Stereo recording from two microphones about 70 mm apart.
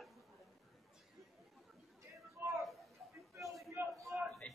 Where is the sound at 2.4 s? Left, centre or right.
Right.